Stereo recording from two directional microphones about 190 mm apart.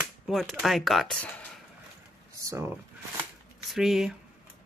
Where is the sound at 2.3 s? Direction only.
15° right (ahead or behind).